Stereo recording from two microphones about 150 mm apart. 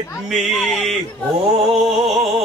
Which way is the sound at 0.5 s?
Centre (ahead or behind).